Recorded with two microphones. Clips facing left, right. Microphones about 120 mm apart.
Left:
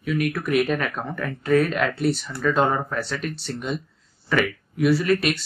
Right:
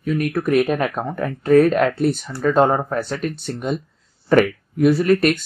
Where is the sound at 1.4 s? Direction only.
45° right (ahead or behind).